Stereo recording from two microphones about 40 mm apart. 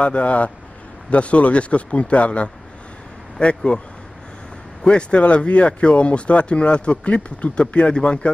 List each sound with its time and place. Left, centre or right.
0.0 s speech: left
4.8 s speech: left